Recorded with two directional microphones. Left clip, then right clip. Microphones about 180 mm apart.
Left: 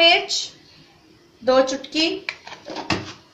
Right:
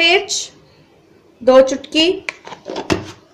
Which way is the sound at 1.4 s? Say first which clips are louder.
Right 7 dB; 45° right (ahead or behind).